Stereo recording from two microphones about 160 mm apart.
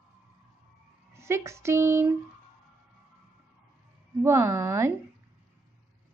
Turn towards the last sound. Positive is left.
turn(degrees=-20)  # may be behind; listen again after turning